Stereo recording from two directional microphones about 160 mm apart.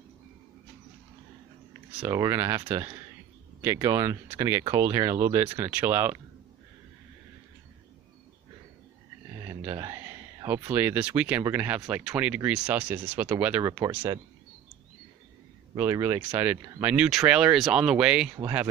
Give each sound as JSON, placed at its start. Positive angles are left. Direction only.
{"t": 2.0, "sound": "speech", "side_deg": -15}
{"t": 9.5, "sound": "a sound", "side_deg": -20}
{"t": 11.5, "sound": "speech", "side_deg": -10}
{"t": 13.7, "sound": "speech", "side_deg": -20}
{"t": 15.7, "sound": "speech", "side_deg": -15}